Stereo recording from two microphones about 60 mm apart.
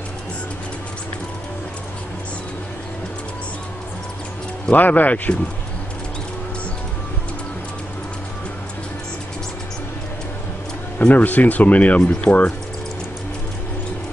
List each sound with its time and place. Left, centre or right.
4.7 s speech: left
11.0 s speech: left